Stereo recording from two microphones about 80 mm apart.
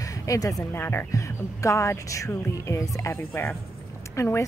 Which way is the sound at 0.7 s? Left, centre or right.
Left.